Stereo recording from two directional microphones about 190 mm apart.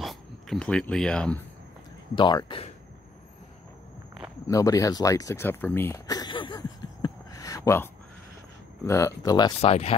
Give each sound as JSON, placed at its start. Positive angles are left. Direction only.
{"t": 0.0, "sound": "speech", "side_deg": 0}
{"t": 2.1, "sound": "speech", "side_deg": 25}
{"t": 4.5, "sound": "a sound", "side_deg": 15}
{"t": 8.8, "sound": "speech", "side_deg": 15}
{"t": 9.6, "sound": "speech", "side_deg": 30}